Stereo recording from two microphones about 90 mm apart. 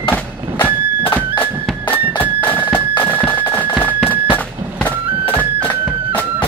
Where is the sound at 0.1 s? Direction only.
15° left (ahead or behind).